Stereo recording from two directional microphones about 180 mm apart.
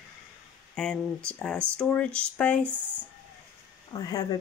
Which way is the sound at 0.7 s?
5° left (ahead or behind).